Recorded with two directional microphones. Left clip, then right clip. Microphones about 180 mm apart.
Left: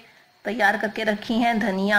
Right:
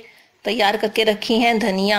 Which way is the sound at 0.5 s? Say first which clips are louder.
Right 3 dB; 35° right (ahead or behind).